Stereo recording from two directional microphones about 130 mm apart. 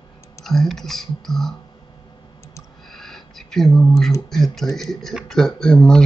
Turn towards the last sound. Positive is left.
turn(degrees=5)  # may be behind; listen again after turning